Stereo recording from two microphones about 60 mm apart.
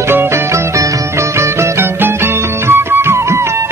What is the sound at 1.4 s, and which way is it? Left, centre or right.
Music, right.